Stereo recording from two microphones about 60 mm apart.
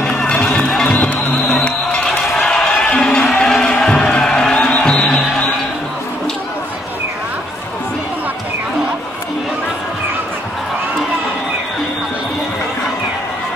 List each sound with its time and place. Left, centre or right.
0.3 s music: centre
2.0 s a sound: centre
4.8 s music: centre